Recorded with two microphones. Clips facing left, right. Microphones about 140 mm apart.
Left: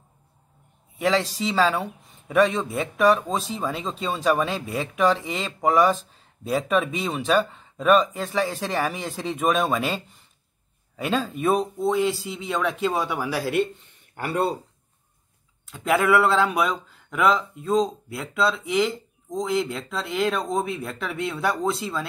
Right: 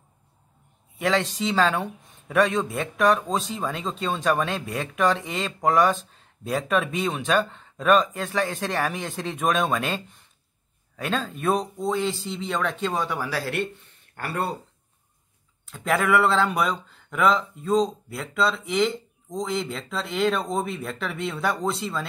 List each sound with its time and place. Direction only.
0.9 s speech: centre (ahead or behind); by 14.5 s 15° left (ahead or behind)
15.6 s speech: centre (ahead or behind)